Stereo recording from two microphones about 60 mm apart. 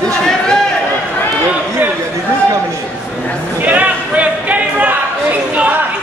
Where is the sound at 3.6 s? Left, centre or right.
Right.